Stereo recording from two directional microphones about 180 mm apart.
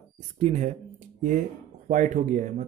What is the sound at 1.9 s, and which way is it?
Speech, 45° right (ahead or behind).